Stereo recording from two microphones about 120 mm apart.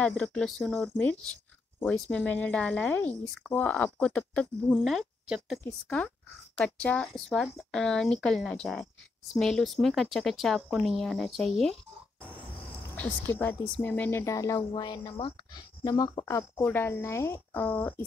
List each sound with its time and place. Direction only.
0.1 s speech: 5° left (ahead or behind)
4.7 s speech: centre (ahead or behind)
5.6 s speech: 15° left (ahead or behind)
12.9 s speech: 15° left (ahead or behind)
14.2 s speech: 25° left (ahead or behind)
14.7 s speech: 35° left (ahead or behind); by 18.0 s 15° left (ahead or behind)